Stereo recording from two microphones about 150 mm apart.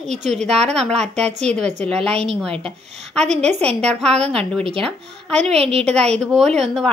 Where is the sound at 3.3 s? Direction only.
45° right (ahead or behind).